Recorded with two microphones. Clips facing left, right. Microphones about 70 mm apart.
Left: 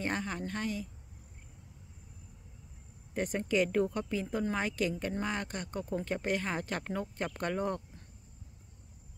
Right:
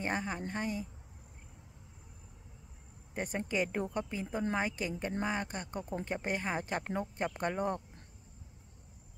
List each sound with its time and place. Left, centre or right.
0.0 s a woman's voice: centre
3.3 s a woman's voice: centre